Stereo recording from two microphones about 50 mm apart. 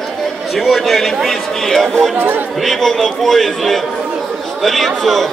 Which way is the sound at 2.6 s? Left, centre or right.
Centre.